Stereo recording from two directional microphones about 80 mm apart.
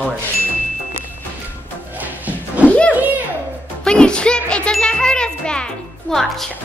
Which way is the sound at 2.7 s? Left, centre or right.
Centre.